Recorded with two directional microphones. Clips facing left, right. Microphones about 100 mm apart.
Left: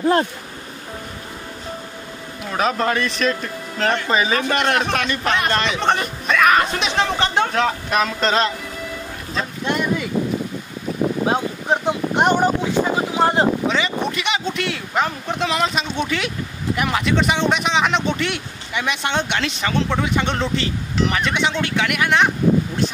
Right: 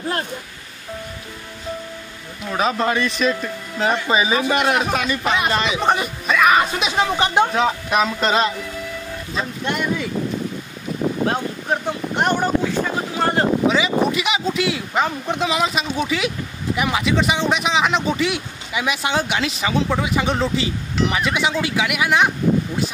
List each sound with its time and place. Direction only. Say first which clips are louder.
2.5 s speech: even; centre (ahead or behind)
11.2 s speech: left 2 dB; 15° left (ahead or behind)
13.7 s speech: right 3 dB; 5° right (ahead or behind)